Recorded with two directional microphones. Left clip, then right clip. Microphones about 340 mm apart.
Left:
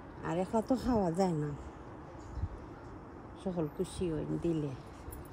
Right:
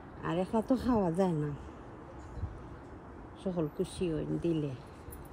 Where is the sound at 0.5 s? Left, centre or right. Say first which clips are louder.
Right 1 dB; centre.